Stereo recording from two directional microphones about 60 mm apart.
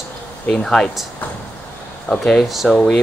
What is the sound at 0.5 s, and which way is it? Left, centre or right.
Speech, centre.